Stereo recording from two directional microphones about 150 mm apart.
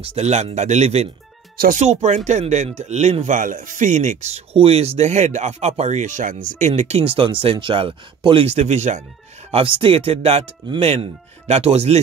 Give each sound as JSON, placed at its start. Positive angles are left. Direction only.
{"t": 0.0, "sound": "speech", "side_deg": -45}
{"t": 9.5, "sound": "speech", "side_deg": -35}